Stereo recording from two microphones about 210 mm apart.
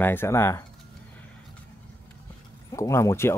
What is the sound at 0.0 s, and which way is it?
Speech, 10° left (ahead or behind).